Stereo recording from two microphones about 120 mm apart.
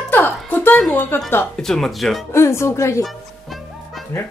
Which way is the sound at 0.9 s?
15° left (ahead or behind).